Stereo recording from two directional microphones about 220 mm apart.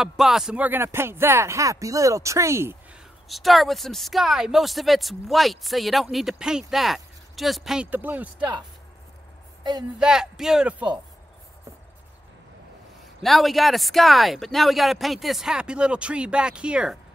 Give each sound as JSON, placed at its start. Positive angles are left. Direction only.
{"t": 0.0, "sound": "speech", "side_deg": 0}
{"t": 3.3, "sound": "speech", "side_deg": 0}
{"t": 9.6, "sound": "a sound", "side_deg": -20}
{"t": 9.9, "sound": "speech", "side_deg": -5}
{"t": 13.2, "sound": "speech", "side_deg": 0}